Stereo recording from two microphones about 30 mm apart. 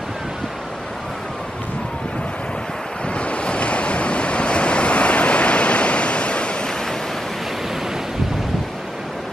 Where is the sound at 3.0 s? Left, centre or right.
Left.